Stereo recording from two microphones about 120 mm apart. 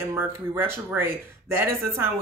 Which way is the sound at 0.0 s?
20° right (ahead or behind).